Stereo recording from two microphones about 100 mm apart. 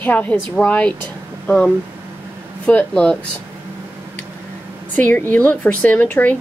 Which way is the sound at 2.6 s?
10° left (ahead or behind).